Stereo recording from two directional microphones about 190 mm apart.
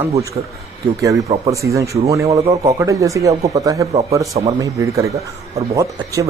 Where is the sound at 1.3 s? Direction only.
20° right (ahead or behind).